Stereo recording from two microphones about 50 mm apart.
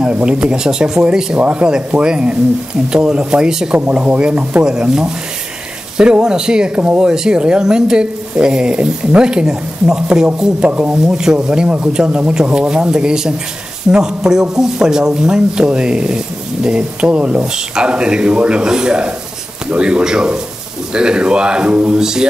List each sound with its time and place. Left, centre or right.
0.0 s speech: centre
3.7 s speech: right
11.1 s speech: centre